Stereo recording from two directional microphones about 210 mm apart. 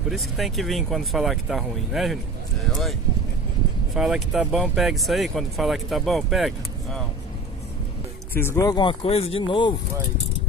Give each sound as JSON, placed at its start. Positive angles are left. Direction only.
{"t": 0.1, "sound": "speech", "side_deg": 0}
{"t": 8.4, "sound": "speech", "side_deg": 15}